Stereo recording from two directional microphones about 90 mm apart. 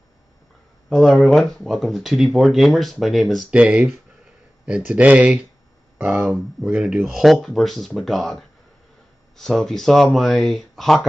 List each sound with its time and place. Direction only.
0.8 s speech: 5° left (ahead or behind)
3.4 s speech: 10° right (ahead or behind)